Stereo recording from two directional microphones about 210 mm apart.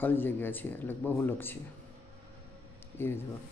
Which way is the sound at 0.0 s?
10° left (ahead or behind).